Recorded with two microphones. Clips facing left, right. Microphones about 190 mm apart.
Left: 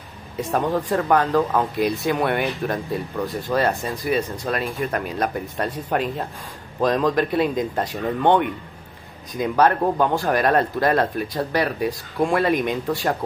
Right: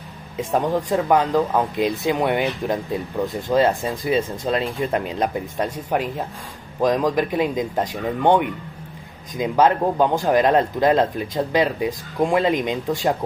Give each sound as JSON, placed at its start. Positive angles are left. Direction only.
{"t": 0.4, "sound": "speech", "side_deg": -10}